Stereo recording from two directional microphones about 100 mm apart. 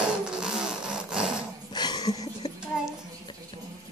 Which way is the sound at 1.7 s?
45° left (ahead or behind).